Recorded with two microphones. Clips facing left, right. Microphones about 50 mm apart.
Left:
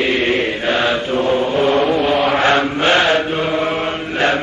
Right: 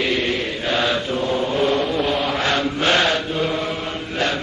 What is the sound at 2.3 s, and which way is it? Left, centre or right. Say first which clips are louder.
Mantra: left 6 dB; left.